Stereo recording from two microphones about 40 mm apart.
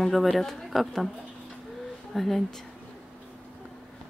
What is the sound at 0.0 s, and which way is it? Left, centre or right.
Speech, centre.